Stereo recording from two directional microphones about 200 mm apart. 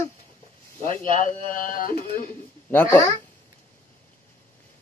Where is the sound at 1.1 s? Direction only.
40° left (ahead or behind).